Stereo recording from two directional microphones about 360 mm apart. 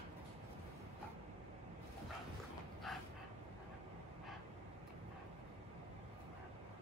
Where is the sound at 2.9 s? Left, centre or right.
Centre.